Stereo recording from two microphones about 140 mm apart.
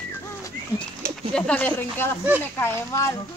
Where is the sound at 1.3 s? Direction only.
10° left (ahead or behind).